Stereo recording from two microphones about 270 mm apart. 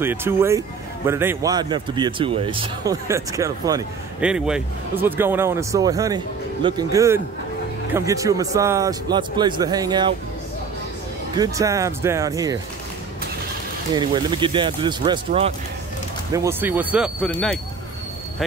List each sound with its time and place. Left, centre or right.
0.0 s speech: centre
11.3 s speech: centre
13.9 s speech: centre